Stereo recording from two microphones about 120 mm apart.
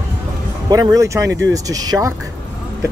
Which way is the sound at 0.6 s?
35° right (ahead or behind).